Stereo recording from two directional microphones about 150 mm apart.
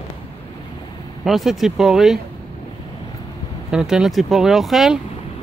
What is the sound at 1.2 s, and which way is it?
Speech, centre (ahead or behind).